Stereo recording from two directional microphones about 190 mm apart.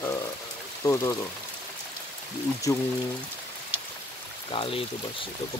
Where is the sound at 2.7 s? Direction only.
15° left (ahead or behind).